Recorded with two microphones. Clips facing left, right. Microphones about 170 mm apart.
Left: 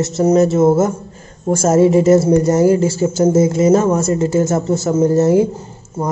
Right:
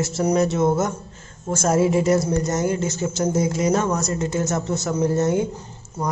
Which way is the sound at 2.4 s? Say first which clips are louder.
Left 10 dB; 30° left (ahead or behind).